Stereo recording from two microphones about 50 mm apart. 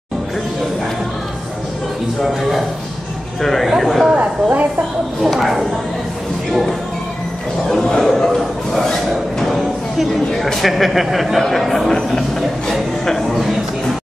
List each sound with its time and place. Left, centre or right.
3.4 s speech: centre
4.2 s a woman's voice: right
5.2 s speech: centre
7.7 s speech: centre
9.1 s speech: centre